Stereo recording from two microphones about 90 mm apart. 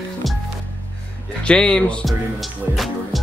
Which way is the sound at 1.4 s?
10° left (ahead or behind).